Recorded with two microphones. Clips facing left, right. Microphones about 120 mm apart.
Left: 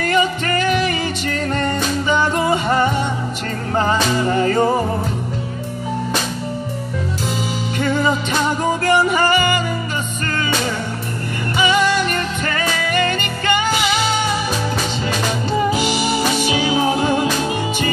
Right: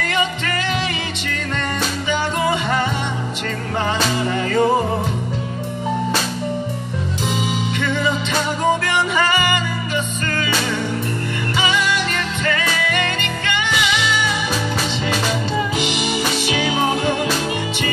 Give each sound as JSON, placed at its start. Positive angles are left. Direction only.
{"t": 0.0, "sound": "music", "side_deg": 40}
{"t": 7.8, "sound": "music", "side_deg": 40}
{"t": 11.7, "sound": "music", "side_deg": 40}
{"t": 16.5, "sound": "music", "side_deg": 30}